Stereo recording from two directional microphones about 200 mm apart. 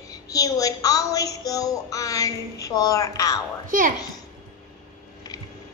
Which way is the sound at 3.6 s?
45° right (ahead or behind).